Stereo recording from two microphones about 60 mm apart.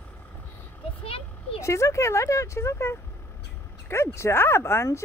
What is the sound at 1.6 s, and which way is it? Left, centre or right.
Speech, left.